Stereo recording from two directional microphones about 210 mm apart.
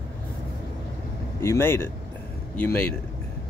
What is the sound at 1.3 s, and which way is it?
Speech, 10° left (ahead or behind).